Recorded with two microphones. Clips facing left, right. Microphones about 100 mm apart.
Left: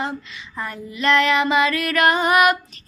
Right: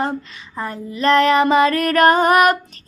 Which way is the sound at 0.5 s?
35° right (ahead or behind).